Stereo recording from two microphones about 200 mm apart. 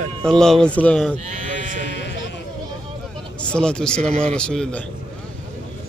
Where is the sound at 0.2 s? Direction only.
5° left (ahead or behind).